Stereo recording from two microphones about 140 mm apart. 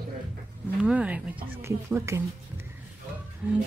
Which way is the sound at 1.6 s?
20° right (ahead or behind).